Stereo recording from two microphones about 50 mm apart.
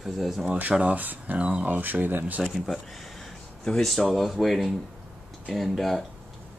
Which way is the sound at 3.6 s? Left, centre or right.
Centre.